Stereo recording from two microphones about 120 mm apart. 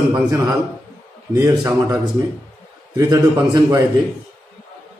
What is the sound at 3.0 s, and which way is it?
Speech, 30° right (ahead or behind).